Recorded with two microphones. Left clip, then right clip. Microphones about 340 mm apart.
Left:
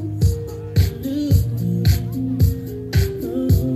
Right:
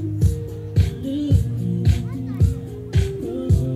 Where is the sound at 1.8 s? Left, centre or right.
Left.